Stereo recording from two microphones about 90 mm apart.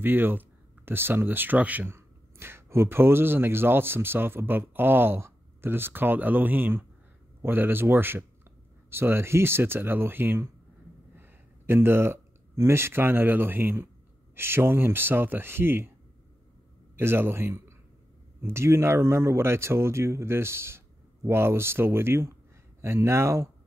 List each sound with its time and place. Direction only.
0.0 s speech: 25° right (ahead or behind)
1.9 s speech: 30° right (ahead or behind)
16.9 s speech: 25° right (ahead or behind)